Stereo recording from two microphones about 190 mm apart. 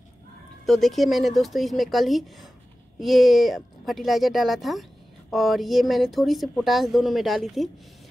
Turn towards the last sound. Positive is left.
turn(degrees=0)  # may be behind; listen again after turning